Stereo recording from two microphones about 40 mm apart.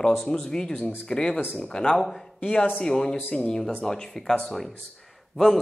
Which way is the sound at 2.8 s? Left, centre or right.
Centre.